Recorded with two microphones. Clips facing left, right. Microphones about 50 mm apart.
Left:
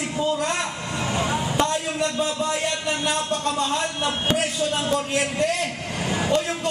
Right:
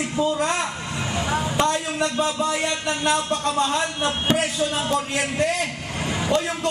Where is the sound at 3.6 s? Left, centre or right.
Right.